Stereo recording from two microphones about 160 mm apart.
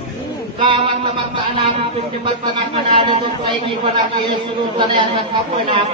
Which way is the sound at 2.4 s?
30° right (ahead or behind).